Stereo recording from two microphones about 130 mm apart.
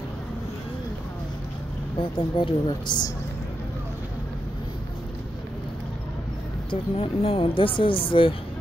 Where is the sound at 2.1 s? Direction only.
40° left (ahead or behind).